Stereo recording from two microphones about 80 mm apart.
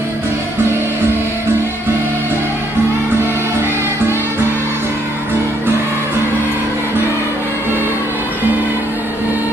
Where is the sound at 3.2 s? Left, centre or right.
Right.